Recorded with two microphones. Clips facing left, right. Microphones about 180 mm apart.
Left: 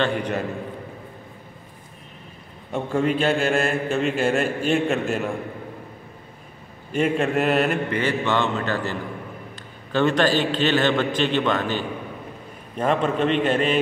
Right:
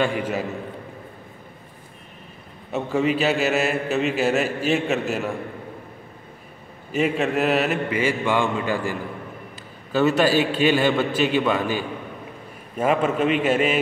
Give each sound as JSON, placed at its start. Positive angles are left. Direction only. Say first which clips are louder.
{"t": 0.0, "sound": "a man's voice", "louder": "even", "side_deg": -5}
{"t": 2.7, "sound": "a man's voice", "louder": "even", "side_deg": -5}
{"t": 6.9, "sound": "mantra", "louder": "even", "side_deg": 0}
{"t": 9.9, "sound": "mantra", "louder": "right 1 dB", "side_deg": -5}